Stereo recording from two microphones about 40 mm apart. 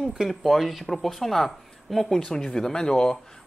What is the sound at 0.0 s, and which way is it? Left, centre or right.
Speech, centre.